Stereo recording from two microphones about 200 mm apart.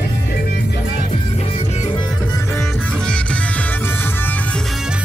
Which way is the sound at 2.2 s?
15° left (ahead or behind).